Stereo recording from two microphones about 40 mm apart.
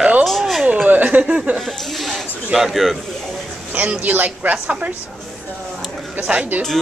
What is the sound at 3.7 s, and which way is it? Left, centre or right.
A man's voice, right.